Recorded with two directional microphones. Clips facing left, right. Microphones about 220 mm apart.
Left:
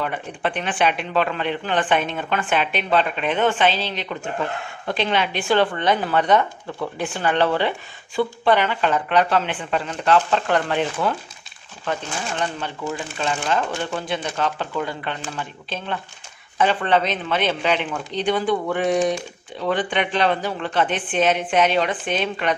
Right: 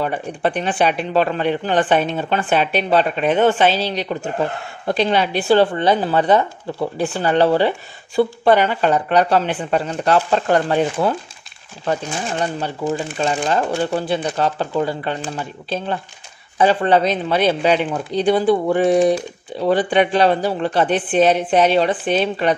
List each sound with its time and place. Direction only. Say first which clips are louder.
0.0 s speech: right 5 dB; 40° right (ahead or behind)